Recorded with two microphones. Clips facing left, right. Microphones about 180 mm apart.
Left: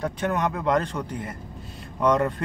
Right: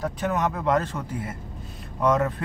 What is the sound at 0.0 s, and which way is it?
Speech, centre (ahead or behind).